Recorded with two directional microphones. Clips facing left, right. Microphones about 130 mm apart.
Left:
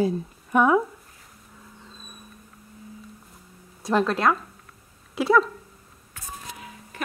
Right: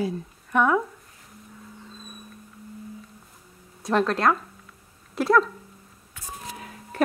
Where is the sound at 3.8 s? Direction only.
Centre (ahead or behind).